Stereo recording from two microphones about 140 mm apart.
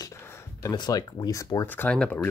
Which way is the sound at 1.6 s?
10° left (ahead or behind).